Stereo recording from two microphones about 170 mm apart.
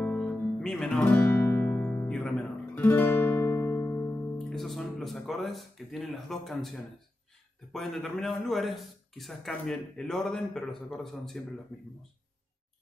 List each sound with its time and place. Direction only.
0.0 s guitar: 5° left (ahead or behind)
4.4 s speech: centre (ahead or behind)